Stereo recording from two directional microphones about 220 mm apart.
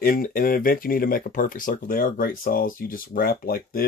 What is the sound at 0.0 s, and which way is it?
Speech, 40° left (ahead or behind).